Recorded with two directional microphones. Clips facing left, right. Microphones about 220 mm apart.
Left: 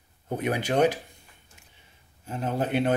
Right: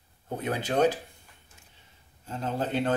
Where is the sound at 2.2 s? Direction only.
15° left (ahead or behind).